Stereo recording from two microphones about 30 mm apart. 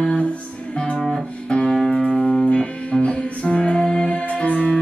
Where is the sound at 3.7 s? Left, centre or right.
Left.